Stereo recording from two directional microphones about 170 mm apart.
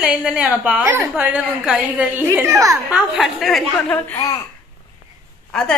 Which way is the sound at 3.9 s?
15° left (ahead or behind).